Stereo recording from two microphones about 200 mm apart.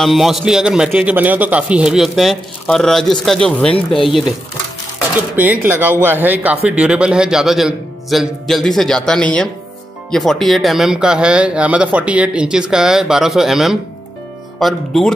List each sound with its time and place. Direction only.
0.0 s speech: centre (ahead or behind)
3.7 s speech: 25° left (ahead or behind)
5.1 s speech: 10° right (ahead or behind)